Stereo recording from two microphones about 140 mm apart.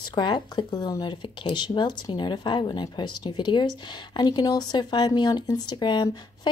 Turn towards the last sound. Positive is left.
turn(degrees=30)  # may be behind; listen again after turning